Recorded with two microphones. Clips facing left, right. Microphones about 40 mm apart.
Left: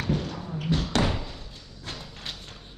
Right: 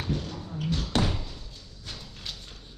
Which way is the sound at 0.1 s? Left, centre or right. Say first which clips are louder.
Left 4 dB; left.